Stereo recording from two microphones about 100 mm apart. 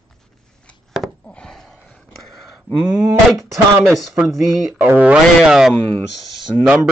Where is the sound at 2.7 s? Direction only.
15° right (ahead or behind).